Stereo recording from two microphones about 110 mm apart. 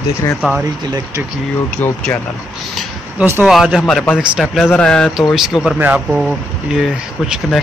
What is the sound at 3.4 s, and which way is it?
Speech, 5° right (ahead or behind).